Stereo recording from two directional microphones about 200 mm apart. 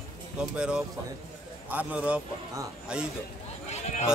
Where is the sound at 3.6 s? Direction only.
35° left (ahead or behind).